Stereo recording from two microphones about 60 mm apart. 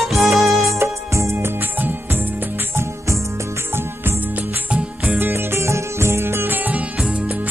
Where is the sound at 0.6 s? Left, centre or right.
Right.